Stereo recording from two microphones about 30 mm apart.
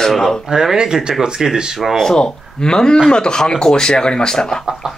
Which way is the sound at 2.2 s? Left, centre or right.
Left.